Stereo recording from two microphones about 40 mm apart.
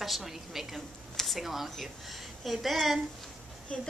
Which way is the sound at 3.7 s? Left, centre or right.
Centre.